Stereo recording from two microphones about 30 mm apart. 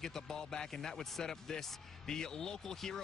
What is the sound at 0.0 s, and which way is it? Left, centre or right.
Speech, centre.